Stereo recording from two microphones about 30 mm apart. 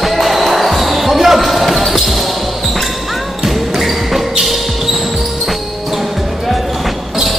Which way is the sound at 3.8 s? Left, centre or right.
Centre.